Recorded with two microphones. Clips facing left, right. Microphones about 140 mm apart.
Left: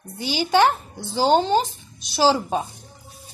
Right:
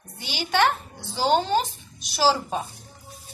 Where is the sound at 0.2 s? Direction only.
35° left (ahead or behind).